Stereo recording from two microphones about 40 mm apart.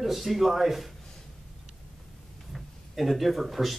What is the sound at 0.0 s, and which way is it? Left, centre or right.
Speech, centre.